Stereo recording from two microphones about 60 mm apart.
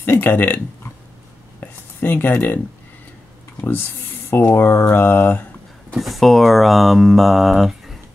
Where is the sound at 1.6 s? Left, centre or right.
Left.